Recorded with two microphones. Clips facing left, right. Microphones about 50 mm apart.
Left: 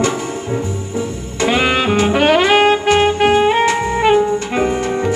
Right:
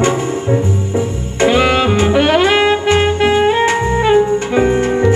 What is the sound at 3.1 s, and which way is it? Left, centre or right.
Music, left.